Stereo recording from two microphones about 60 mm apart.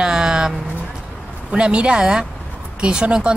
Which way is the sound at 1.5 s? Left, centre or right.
Centre.